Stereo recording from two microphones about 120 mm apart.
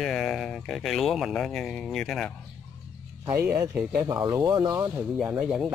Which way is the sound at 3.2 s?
15° right (ahead or behind).